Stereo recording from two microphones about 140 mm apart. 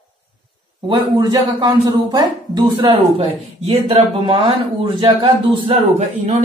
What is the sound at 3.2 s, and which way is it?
A man's voice, 45° right (ahead or behind).